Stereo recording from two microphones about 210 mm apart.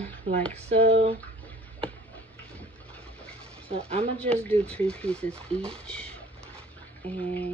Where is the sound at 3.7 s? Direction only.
30° right (ahead or behind).